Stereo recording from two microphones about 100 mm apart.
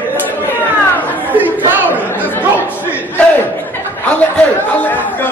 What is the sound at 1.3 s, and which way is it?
Crowd, 15° right (ahead or behind).